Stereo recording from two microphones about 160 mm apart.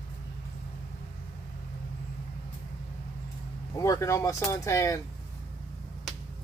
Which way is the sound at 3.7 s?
20° left (ahead or behind).